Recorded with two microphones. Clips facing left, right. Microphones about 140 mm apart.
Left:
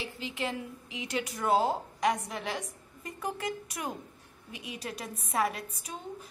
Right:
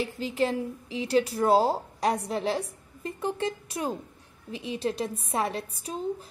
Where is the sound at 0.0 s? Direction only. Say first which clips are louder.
Right 8 dB; 35° right (ahead or behind).